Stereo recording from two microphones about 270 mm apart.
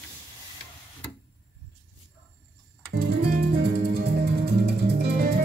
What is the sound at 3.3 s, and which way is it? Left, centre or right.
Music, right.